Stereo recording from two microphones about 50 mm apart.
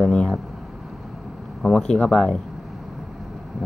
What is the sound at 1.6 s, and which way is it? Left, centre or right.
Speech, centre.